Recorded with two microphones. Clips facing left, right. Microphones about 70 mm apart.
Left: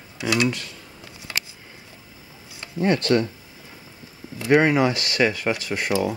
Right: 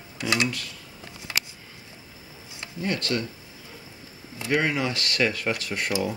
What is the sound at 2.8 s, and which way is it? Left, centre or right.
Speech, left.